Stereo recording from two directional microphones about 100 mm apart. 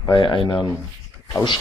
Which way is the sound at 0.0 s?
55° left (ahead or behind).